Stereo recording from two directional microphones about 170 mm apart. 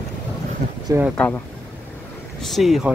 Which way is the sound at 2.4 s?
Centre (ahead or behind).